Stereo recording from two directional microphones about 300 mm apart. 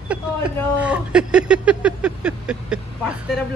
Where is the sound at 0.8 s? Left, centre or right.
Centre.